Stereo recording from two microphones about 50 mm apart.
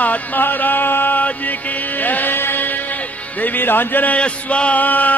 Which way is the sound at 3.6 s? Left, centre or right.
Left.